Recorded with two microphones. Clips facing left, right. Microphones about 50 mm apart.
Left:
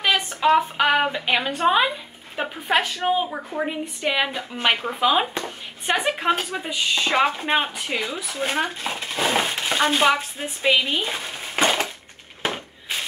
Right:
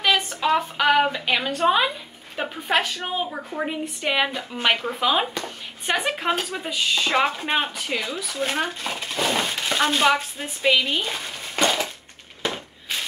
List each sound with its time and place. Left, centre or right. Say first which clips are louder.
0.3 s a woman's voice: left 4 dB; centre
4.3 s speech: even; centre
11.5 s a sound: left 1 dB; left